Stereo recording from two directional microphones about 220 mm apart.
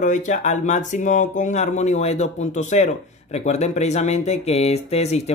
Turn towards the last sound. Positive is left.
turn(degrees=30)  # may be behind; listen again after turning